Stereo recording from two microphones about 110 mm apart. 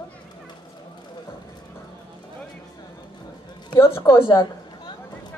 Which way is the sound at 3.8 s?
25° left (ahead or behind).